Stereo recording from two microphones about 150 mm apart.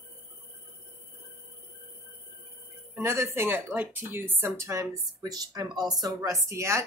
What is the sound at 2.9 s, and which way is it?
Speech, 15° right (ahead or behind).